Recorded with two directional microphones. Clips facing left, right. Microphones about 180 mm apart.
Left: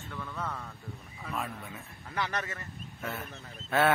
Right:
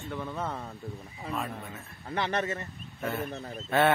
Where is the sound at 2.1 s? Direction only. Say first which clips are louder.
Right 5 dB; 25° right (ahead or behind).